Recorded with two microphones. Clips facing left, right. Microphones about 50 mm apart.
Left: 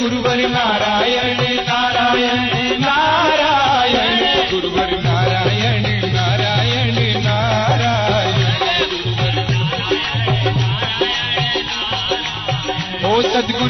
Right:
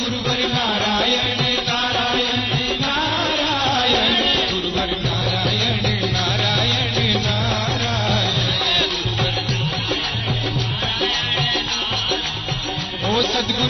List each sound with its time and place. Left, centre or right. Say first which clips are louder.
0.2 s music: left 4 dB; left
7.4 s music: left 6 dB; left
13.1 s music: left 5 dB; left